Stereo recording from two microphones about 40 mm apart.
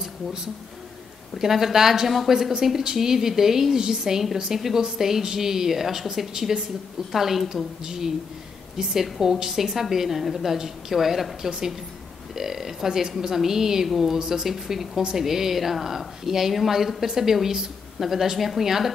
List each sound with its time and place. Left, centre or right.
1.4 s speech: centre
15.0 s speech: centre